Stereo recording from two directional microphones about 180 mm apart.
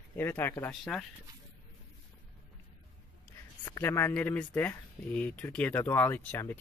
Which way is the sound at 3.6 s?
15° left (ahead or behind).